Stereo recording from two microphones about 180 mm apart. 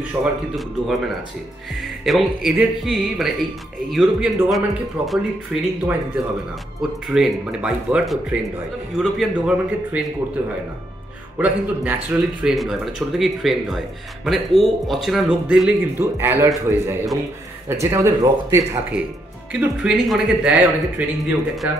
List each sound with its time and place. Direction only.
0.2 s speech: centre (ahead or behind)
11.3 s speech: 10° right (ahead or behind)